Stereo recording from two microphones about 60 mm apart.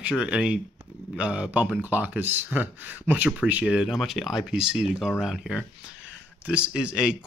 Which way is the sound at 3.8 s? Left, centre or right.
Centre.